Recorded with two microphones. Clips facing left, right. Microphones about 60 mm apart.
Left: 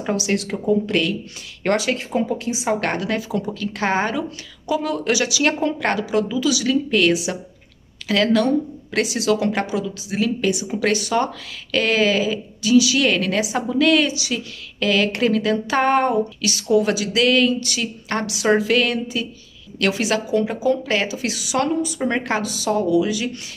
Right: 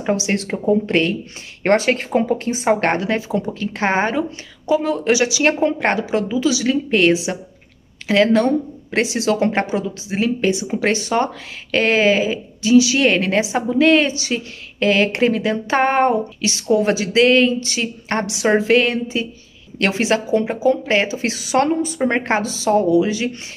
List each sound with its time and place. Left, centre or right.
0.0 s speech: right
2.9 s a woman's voice: right